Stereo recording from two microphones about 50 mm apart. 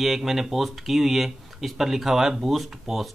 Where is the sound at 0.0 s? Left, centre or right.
Centre.